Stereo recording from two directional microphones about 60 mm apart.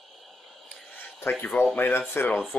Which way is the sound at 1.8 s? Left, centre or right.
Left.